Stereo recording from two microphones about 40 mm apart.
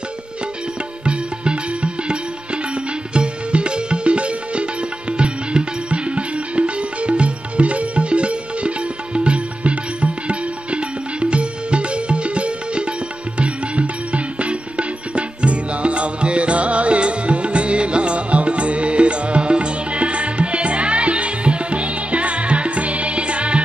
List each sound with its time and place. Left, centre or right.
1.0 s music: right